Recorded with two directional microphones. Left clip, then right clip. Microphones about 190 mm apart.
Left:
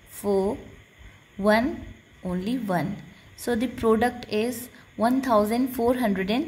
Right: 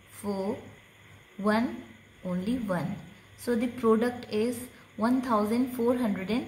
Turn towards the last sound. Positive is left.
turn(degrees=40)  # may be behind; listen again after turning